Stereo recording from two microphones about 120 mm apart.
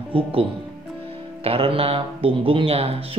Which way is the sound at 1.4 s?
50° right (ahead or behind).